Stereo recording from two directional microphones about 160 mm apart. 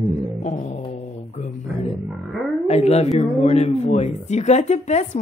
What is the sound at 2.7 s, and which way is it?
Speech, 40° left (ahead or behind).